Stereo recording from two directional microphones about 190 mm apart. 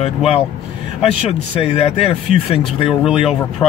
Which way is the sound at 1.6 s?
30° left (ahead or behind).